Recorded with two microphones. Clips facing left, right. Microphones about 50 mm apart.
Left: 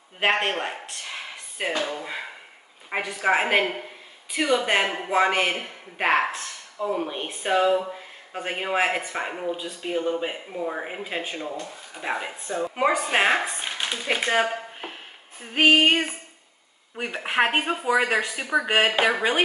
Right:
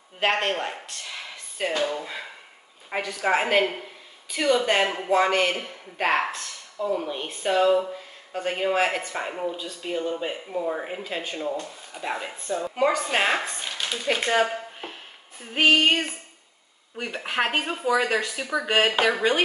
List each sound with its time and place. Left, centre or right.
0.2 s speech: left
2.9 s speech: centre